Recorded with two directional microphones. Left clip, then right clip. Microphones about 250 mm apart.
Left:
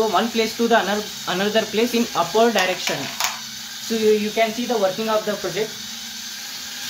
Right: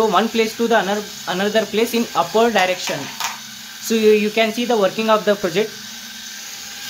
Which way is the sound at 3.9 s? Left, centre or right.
Right.